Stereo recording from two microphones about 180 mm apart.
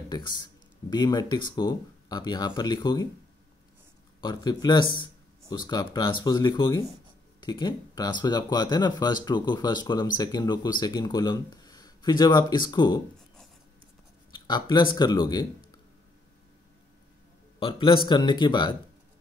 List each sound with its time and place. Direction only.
0.1 s speech: 25° left (ahead or behind)
4.2 s speech: 25° left (ahead or behind)
14.3 s speech: 25° left (ahead or behind)
17.6 s speech: 30° left (ahead or behind)